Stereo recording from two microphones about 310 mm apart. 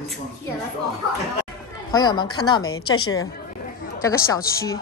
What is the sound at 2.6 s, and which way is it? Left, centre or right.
Speech, left.